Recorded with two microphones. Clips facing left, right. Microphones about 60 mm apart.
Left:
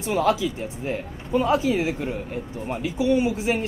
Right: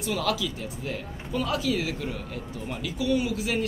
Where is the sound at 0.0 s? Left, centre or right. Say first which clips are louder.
Left 6 dB; left.